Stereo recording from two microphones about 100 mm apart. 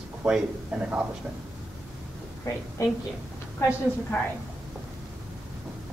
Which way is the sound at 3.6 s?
30° left (ahead or behind).